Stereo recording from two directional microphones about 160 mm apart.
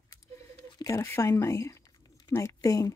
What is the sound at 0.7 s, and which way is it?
Speech, 20° left (ahead or behind).